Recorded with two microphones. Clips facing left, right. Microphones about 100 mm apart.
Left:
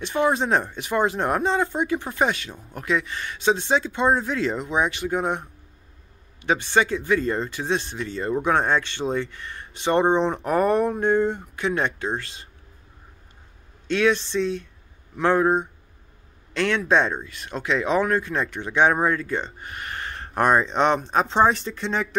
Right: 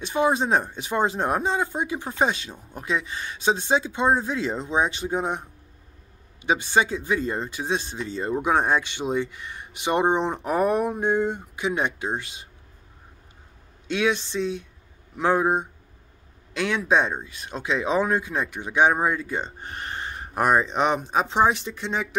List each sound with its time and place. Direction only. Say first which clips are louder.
0.0 s speech: even; 15° right (ahead or behind)
6.4 s speech: left 1 dB; 15° right (ahead or behind)
13.8 s speech: left 3 dB; 10° right (ahead or behind)
17.2 s speech: left 2 dB; 25° right (ahead or behind)
19.6 s a sound: even; 30° right (ahead or behind)
20.2 s speech: left 1 dB; 5° right (ahead or behind)